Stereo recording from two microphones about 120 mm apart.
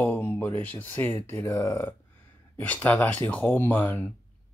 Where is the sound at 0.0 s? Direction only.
20° left (ahead or behind).